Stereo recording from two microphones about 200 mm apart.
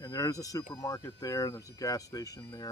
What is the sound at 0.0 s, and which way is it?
Speech, 20° left (ahead or behind).